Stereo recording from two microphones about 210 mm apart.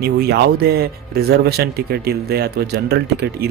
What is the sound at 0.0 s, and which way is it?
Speech, 50° right (ahead or behind).